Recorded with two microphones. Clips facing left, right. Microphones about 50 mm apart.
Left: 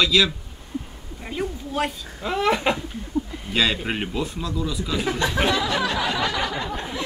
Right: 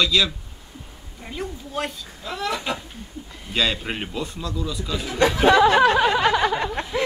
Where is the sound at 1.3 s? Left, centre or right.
Centre.